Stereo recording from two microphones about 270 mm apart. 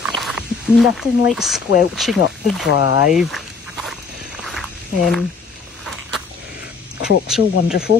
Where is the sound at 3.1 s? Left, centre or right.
Centre.